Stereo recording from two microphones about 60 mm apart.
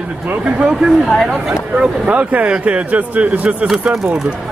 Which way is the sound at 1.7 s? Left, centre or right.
Centre.